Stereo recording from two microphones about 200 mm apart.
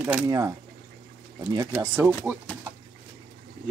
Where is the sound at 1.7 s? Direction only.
5° right (ahead or behind).